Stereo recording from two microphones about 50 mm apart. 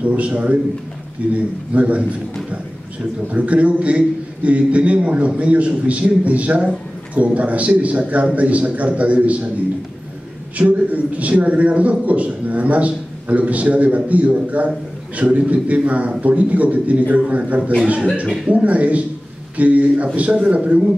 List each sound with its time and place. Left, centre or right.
0.0 s a man's voice: right
3.3 s a man's voice: right
10.6 s a man's voice: right
18.6 s a man's voice: right